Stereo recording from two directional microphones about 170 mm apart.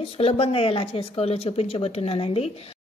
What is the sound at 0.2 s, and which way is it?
Speech, 35° left (ahead or behind).